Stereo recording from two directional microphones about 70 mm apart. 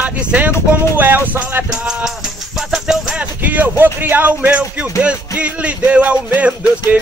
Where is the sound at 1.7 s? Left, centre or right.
Centre.